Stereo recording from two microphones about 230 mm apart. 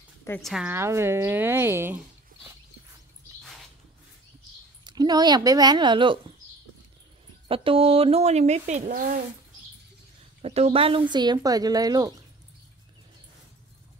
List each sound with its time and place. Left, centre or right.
0.2 s speech: centre
4.8 s speech: centre
7.4 s speech: right
10.4 s speech: right